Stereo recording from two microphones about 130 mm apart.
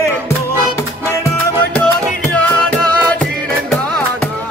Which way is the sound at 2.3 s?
10° left (ahead or behind).